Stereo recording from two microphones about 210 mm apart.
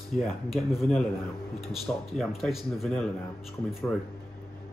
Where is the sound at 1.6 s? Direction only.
Centre (ahead or behind).